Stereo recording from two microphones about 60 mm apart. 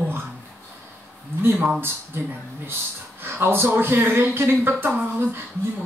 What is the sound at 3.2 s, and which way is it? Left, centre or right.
Speech, right.